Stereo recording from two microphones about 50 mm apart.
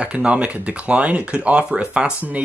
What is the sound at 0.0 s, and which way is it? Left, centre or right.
Speech, right.